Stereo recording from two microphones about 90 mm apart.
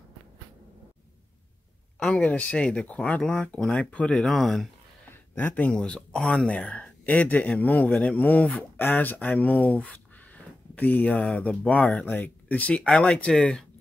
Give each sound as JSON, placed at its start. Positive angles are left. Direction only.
{"t": 2.0, "sound": "speech", "side_deg": 10}
{"t": 4.3, "sound": "speech", "side_deg": 0}
{"t": 5.3, "sound": "speech", "side_deg": 15}